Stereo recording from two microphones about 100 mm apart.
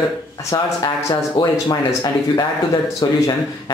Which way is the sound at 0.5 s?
35° left (ahead or behind).